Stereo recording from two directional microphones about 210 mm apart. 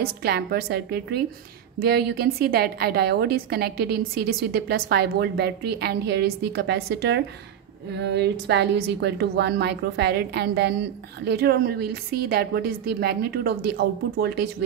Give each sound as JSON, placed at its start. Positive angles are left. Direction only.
{"t": 0.0, "sound": "a woman's voice", "side_deg": -50}